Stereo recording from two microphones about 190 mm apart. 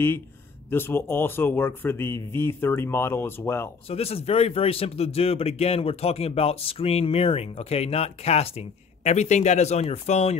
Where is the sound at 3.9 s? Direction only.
30° left (ahead or behind).